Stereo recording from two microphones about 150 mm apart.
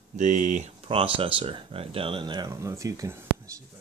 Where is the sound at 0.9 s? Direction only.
40° right (ahead or behind).